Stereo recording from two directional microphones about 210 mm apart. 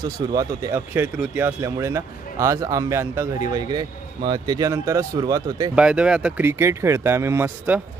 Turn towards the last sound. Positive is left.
turn(degrees=-10)  # may be behind; listen again after turning